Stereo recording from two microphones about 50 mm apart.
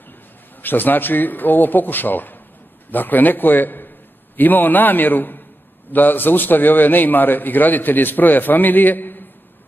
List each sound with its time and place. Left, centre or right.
0.6 s a man's voice: left